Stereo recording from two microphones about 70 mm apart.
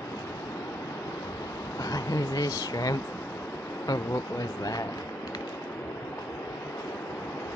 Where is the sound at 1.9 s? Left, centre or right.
Left.